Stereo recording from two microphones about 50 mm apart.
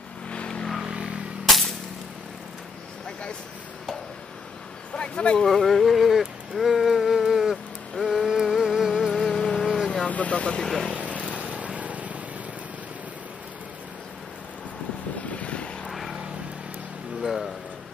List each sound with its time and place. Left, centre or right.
0.3 s vehicle: centre
0.7 s vehicle: centre
4.9 s a sound: left
5.5 s a sound: centre
8.0 s music: centre
9.1 s insect: centre
10.0 s vehicle: left
10.6 s speech: centre
11.1 s vehicle: right
15.3 s vehicle: left
15.9 s vehicle: centre
17.2 s music: centre